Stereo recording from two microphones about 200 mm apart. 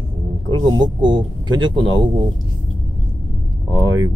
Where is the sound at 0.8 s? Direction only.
25° right (ahead or behind).